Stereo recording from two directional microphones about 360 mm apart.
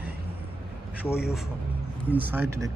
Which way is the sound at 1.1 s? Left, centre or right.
Centre.